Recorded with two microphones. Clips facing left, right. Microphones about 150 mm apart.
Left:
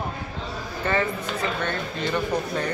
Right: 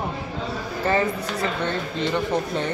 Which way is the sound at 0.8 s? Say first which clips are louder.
Right 2 dB; 35° right (ahead or behind).